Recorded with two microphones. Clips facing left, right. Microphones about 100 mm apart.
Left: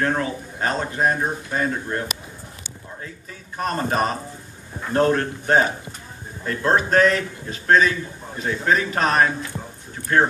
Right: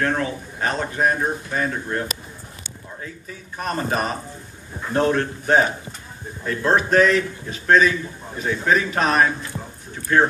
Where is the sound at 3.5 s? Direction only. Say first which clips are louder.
Left 1 dB; 35° left (ahead or behind).